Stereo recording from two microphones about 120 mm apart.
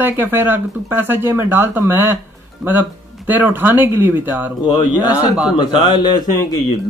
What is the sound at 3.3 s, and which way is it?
Speech, 15° right (ahead or behind).